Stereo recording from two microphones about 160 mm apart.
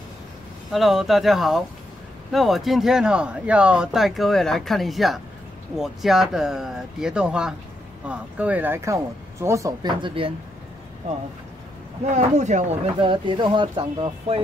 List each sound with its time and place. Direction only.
0.7 s speech: centre (ahead or behind); by 10.3 s 30° right (ahead or behind)
12.1 s speech: 50° right (ahead or behind)
13.0 s speech: 30° right (ahead or behind)